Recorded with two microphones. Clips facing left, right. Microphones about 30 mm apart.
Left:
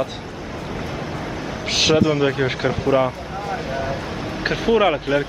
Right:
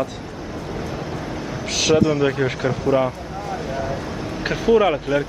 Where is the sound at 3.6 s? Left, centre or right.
Left.